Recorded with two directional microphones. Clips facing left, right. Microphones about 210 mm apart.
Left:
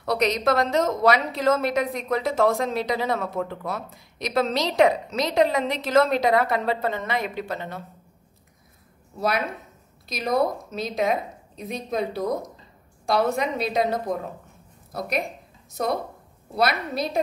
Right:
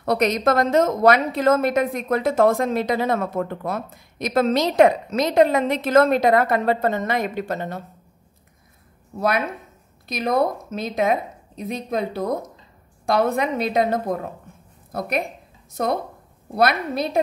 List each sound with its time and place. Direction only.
0.0 s a woman's voice: 50° right (ahead or behind)
10.0 s a woman's voice: 50° right (ahead or behind)